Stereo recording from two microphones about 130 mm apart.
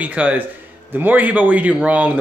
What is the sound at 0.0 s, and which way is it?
Speech, 10° right (ahead or behind).